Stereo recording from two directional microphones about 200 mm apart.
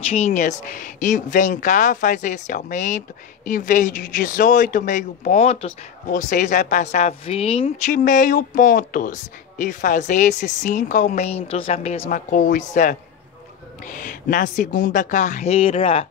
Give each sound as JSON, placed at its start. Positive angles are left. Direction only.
{"t": 0.0, "sound": "speech", "side_deg": 30}